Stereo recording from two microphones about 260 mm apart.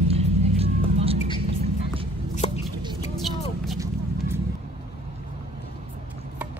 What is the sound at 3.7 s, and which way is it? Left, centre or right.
Vehicle, centre.